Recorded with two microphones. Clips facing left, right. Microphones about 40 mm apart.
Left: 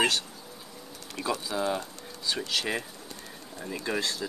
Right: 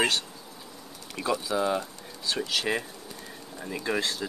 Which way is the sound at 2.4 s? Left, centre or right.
Centre.